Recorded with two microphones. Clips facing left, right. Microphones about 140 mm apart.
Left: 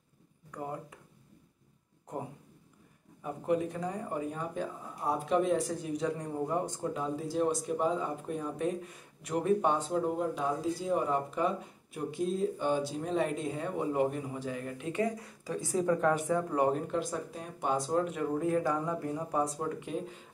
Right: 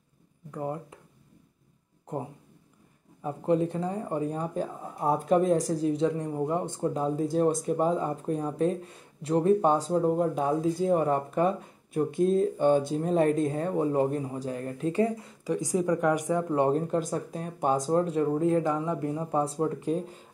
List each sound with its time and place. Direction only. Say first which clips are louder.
0.6 s speech: right 6 dB; 25° right (ahead or behind)
3.3 s speech: right 5 dB; 30° right (ahead or behind)
6.9 s speech: right 6 dB; 40° right (ahead or behind)
15.4 s speech: right 3 dB; 15° right (ahead or behind)
16.9 s speech: right 5 dB; 45° right (ahead or behind)